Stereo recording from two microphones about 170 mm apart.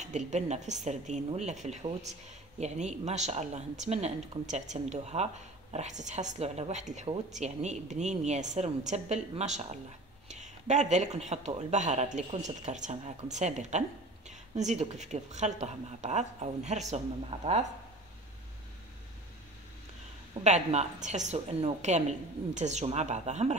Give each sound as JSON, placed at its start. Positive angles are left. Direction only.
{"t": 0.0, "sound": "speech", "side_deg": -45}
{"t": 20.4, "sound": "speech", "side_deg": -45}